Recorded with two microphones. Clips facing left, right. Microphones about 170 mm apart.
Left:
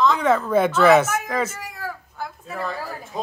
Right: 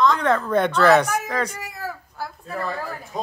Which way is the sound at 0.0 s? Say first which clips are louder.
Left 1 dB; 5° left (ahead or behind).